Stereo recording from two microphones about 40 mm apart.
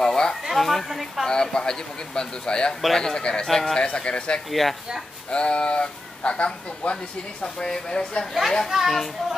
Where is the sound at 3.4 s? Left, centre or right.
Centre.